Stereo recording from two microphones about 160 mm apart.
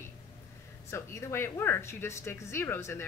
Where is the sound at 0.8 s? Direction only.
15° left (ahead or behind).